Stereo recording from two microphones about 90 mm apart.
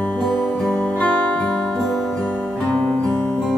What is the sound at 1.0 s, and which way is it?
Music, 15° left (ahead or behind).